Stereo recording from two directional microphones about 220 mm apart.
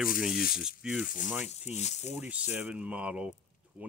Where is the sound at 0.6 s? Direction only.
5° right (ahead or behind).